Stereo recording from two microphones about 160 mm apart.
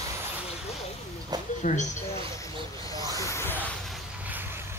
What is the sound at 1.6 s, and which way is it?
Speech, 50° left (ahead or behind).